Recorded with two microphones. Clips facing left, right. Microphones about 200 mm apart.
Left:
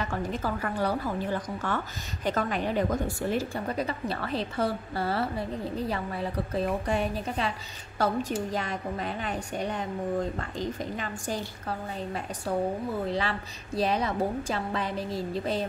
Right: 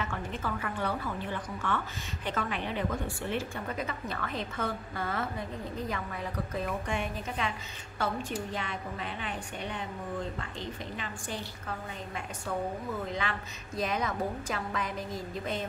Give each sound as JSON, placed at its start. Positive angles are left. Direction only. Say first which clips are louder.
{"t": 0.0, "sound": "a woman's voice", "louder": "left 5 dB", "side_deg": 35}
{"t": 13.0, "sound": "a woman's voice", "louder": "left 5 dB", "side_deg": 35}